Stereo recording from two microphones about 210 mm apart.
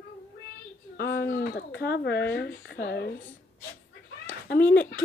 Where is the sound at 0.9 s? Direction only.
45° left (ahead or behind).